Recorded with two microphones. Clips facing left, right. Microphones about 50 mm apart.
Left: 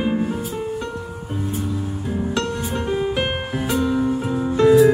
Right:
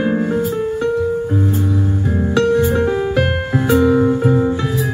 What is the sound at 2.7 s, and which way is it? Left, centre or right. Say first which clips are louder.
Music: right 6 dB; centre.